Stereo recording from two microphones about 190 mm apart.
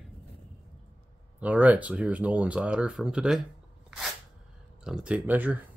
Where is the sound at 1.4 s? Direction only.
5° right (ahead or behind).